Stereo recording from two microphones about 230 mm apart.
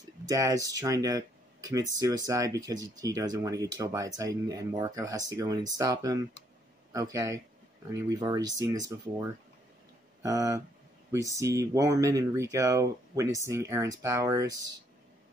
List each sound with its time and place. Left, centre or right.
0.2 s speech: centre